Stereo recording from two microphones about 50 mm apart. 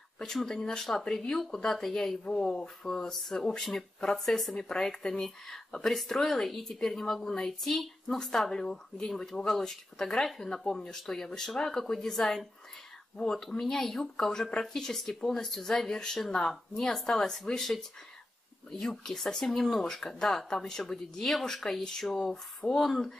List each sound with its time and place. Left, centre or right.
0.2 s speech: centre
2.2 s speech: centre